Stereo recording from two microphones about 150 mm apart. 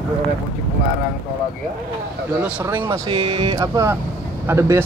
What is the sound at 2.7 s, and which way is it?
Speech, 15° right (ahead or behind).